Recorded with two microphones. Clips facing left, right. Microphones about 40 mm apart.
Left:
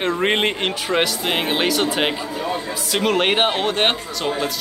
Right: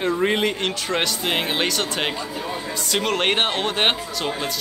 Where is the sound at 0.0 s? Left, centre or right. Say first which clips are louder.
Left 1 dB; left.